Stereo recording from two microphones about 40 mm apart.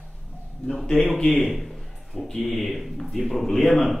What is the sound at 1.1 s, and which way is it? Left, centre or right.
A man's voice, centre.